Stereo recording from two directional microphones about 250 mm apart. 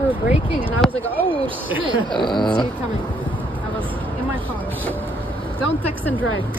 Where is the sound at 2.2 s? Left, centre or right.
Centre.